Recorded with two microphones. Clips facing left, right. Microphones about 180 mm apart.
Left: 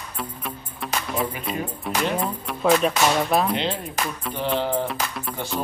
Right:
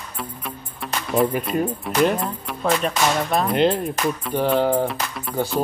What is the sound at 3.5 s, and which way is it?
Speech, 45° right (ahead or behind).